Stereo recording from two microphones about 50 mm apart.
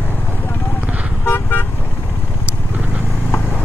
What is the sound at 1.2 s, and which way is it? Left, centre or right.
Vehicle, left.